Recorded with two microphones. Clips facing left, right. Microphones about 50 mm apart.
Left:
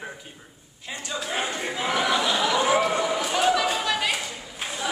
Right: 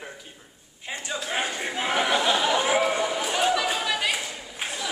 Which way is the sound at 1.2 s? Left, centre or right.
Centre.